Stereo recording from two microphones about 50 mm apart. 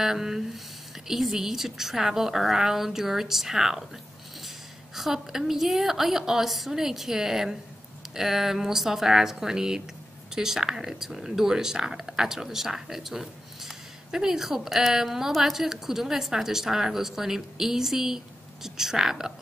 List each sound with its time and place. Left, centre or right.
0.0 s speech: centre
4.9 s speech: centre